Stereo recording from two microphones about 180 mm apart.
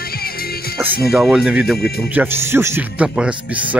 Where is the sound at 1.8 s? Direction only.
60° left (ahead or behind).